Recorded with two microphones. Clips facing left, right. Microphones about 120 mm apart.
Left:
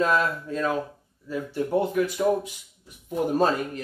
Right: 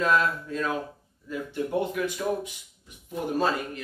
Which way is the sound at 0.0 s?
35° left (ahead or behind).